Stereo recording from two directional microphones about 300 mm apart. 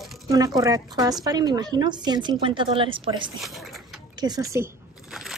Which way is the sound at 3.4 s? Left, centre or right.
Centre.